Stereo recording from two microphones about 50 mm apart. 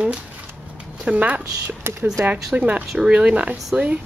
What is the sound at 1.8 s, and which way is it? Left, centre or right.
Speech, right.